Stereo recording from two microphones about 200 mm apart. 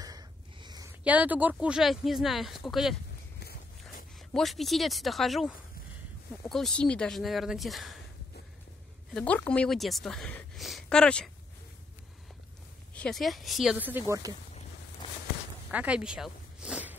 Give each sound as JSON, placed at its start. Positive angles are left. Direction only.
{"t": 0.0, "sound": "a sound", "side_deg": -20}
{"t": 1.0, "sound": "speech", "side_deg": -10}
{"t": 4.3, "sound": "speech", "side_deg": 0}
{"t": 9.1, "sound": "speech", "side_deg": 5}
{"t": 12.9, "sound": "speech", "side_deg": 5}
{"t": 15.7, "sound": "speech", "side_deg": -5}